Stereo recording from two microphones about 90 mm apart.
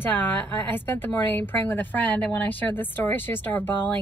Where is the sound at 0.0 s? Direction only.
20° left (ahead or behind).